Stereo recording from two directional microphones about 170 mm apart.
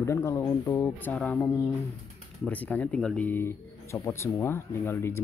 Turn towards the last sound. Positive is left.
turn(degrees=15)  # may be behind; listen again after turning